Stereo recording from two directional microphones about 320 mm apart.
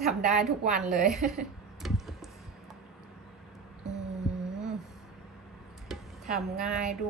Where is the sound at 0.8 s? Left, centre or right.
Centre.